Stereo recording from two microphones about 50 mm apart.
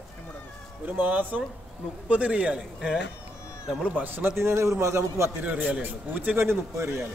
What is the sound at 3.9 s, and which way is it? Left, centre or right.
Speech, right.